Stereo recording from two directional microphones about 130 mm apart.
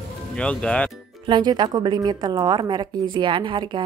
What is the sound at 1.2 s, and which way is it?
A woman's voice, 35° right (ahead or behind).